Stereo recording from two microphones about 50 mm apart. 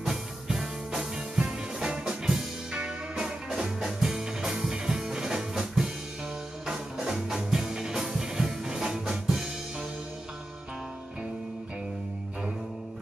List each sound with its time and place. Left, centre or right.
0.0 s music: centre